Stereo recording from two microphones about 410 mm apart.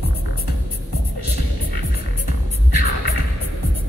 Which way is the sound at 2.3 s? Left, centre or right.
Left.